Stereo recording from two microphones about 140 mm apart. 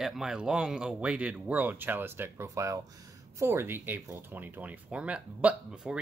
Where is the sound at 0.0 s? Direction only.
Centre (ahead or behind).